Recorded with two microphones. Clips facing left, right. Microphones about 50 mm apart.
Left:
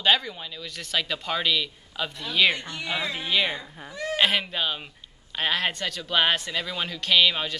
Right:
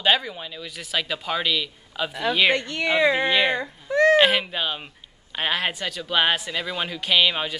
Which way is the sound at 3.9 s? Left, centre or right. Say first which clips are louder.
Right 14 dB; right.